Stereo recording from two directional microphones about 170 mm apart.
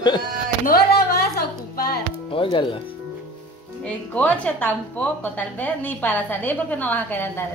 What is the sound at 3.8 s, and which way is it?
A woman's voice, 10° left (ahead or behind).